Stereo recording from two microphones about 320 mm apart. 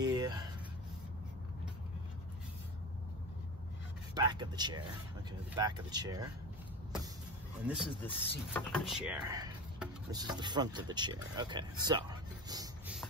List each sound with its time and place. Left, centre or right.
0.0 s a sound: centre
4.1 s speech: centre
7.6 s speech: centre